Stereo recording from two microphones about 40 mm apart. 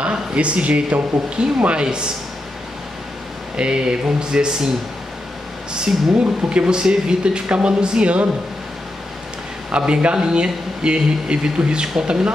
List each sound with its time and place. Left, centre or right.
0.4 s a man's voice: right
3.5 s a man's voice: right
5.7 s a man's voice: right
9.7 s a man's voice: right